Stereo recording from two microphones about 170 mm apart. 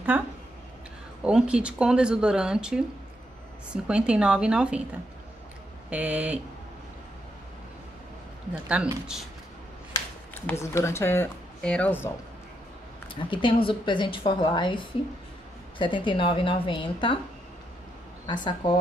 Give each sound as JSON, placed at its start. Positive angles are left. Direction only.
{"t": 0.1, "sound": "speech", "side_deg": -10}
{"t": 5.9, "sound": "speech", "side_deg": -5}
{"t": 8.6, "sound": "speech", "side_deg": -5}
{"t": 10.4, "sound": "speech", "side_deg": 15}
{"t": 13.1, "sound": "a woman's voice", "side_deg": 30}
{"t": 15.8, "sound": "a woman's voice", "side_deg": 30}
{"t": 18.2, "sound": "a woman's voice", "side_deg": 30}